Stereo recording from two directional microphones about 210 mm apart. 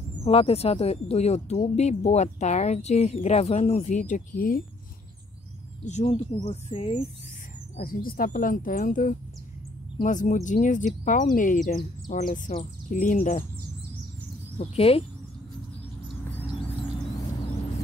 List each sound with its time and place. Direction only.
0.2 s speech: 30° left (ahead or behind)
5.9 s speech: 35° left (ahead or behind)
7.7 s speech: 45° left (ahead or behind)
14.6 s speech: 30° left (ahead or behind)